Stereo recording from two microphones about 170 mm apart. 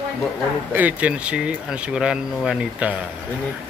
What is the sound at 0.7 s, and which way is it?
Speech, 10° right (ahead or behind).